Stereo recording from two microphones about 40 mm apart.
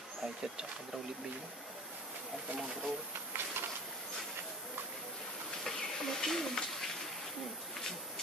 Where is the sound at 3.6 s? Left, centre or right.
Right.